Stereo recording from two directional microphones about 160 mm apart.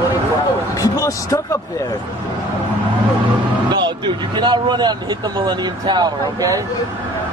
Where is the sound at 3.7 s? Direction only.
30° right (ahead or behind).